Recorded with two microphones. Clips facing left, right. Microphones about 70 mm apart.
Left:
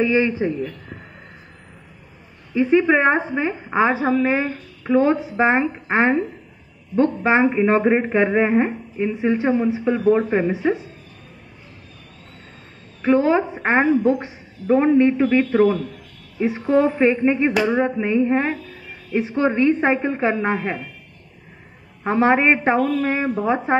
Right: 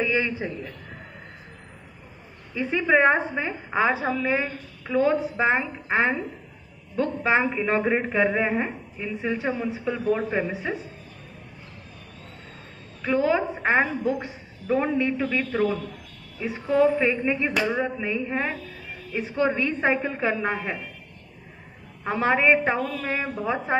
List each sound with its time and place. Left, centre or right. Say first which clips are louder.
0.2 s a woman's voice: left 8 dB; centre
2.5 s a woman's voice: left 6 dB; centre; by 6.2 s left
7.2 s a woman's voice: left 4 dB; left
10.5 s a woman's voice: left 9 dB; centre
13.0 s a woman's voice: left 6 dB; left
22.0 s a woman's voice: left 5 dB; left